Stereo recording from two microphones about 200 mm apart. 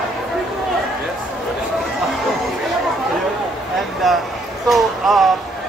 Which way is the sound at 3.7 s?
Centre (ahead or behind).